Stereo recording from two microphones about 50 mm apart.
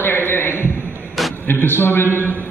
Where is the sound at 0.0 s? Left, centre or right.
Left.